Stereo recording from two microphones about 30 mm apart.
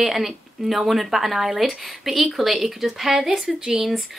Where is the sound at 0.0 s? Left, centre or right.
Centre.